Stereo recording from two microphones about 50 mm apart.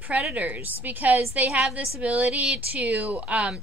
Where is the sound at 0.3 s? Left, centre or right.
Right.